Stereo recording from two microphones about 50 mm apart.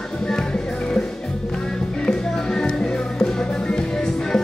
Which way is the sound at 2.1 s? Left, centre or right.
Centre.